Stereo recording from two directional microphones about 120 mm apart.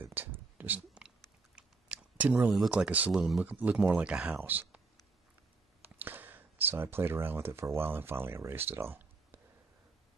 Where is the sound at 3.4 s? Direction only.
15° right (ahead or behind).